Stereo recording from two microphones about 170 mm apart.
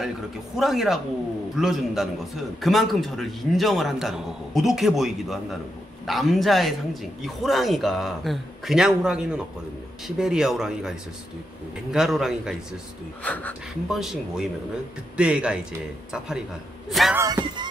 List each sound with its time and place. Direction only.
0.6 s a man's voice: centre (ahead or behind)
13.2 s speech: 10° left (ahead or behind)
13.8 s a man's voice: 5° right (ahead or behind)
17.1 s speech: 20° right (ahead or behind)